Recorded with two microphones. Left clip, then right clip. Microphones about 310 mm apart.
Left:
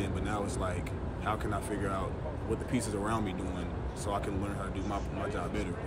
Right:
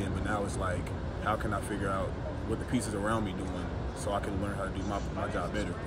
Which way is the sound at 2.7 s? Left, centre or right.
Centre.